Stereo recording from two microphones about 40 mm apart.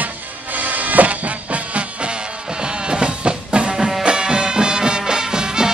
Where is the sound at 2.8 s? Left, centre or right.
Right.